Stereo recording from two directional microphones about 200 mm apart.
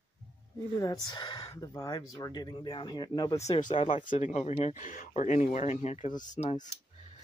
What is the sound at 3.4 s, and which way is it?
Speech, 35° left (ahead or behind).